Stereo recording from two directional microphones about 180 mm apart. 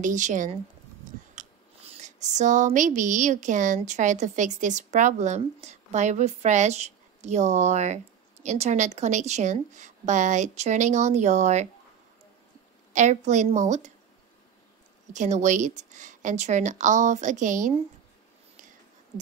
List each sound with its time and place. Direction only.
0.0 s a woman's voice: 45° right (ahead or behind)
12.9 s speech: 40° right (ahead or behind)
15.1 s a woman's voice: 40° right (ahead or behind)